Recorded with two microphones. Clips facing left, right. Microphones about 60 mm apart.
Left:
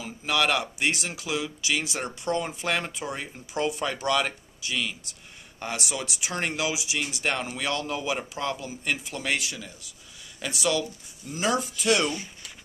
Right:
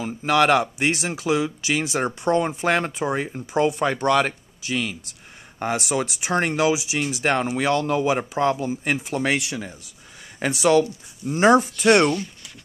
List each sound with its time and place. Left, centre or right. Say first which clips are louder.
0.0 s speech: right 7 dB; right
5.6 s speech: right 8 dB; right